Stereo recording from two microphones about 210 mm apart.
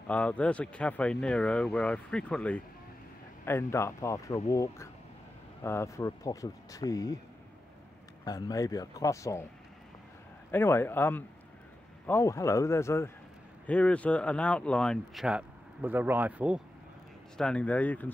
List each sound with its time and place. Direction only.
0.1 s speech: 5° left (ahead or behind)
8.3 s speech: 15° left (ahead or behind)
10.5 s speech: 10° left (ahead or behind); by 16.6 s 5° right (ahead or behind)
17.4 s speech: 5° left (ahead or behind)